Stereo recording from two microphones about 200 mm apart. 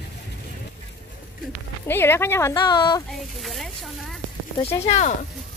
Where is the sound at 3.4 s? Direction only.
Centre (ahead or behind).